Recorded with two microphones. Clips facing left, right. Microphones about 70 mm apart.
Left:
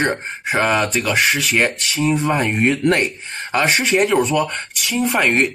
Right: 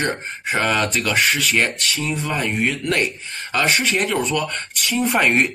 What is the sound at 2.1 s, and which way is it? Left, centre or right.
Speech, left.